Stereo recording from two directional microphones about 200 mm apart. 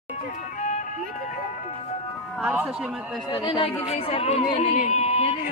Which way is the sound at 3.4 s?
25° left (ahead or behind).